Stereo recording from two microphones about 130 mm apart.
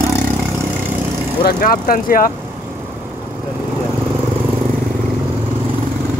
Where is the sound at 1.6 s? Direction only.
90° left.